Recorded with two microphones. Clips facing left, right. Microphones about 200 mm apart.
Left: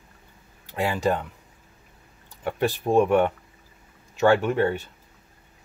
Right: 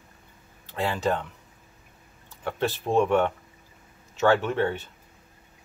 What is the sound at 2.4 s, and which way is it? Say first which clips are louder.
Speech: left 3 dB; 15° left (ahead or behind).